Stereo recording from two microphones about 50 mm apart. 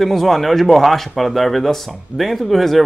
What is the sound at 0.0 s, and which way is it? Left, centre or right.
Speech, centre.